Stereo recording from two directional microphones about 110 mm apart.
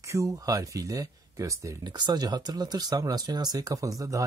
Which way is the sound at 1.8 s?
40° right (ahead or behind).